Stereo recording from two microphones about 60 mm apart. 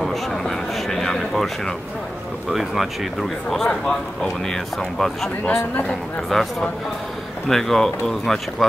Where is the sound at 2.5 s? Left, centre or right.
Centre.